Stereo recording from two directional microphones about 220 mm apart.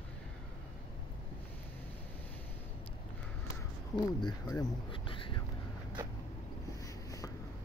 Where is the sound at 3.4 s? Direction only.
20° left (ahead or behind).